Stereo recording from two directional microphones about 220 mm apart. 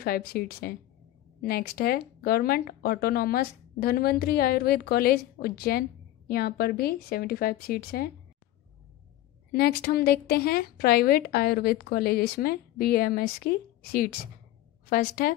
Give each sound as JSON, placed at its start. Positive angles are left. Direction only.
{"t": 0.0, "sound": "speech", "side_deg": 45}
{"t": 9.5, "sound": "speech", "side_deg": 45}
{"t": 14.9, "sound": "speech", "side_deg": 40}